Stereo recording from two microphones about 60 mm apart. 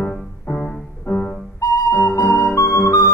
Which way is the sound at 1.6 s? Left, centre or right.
Left.